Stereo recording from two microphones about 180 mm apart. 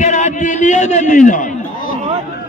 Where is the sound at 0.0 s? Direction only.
40° left (ahead or behind).